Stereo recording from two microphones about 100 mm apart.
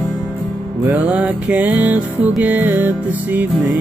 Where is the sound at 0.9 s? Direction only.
15° right (ahead or behind).